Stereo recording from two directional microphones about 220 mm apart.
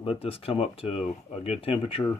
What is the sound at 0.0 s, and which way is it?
Speech, 25° left (ahead or behind).